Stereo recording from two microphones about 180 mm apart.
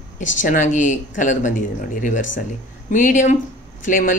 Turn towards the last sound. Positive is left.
turn(degrees=45)  # may be behind; listen again after turning